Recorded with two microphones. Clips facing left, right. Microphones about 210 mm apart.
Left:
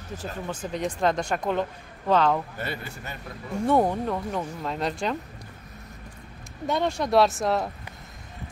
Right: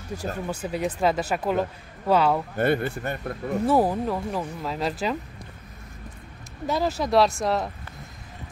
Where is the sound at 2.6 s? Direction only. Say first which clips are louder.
Right 11 dB; 55° right (ahead or behind).